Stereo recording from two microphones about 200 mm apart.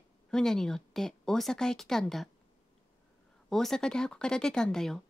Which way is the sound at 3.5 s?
Centre (ahead or behind).